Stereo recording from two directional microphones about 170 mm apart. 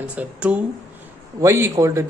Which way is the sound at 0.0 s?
5° right (ahead or behind).